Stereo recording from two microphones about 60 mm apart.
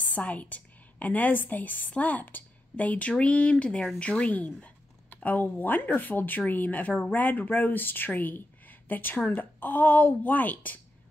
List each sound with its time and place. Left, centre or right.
0.0 s a woman's voice: left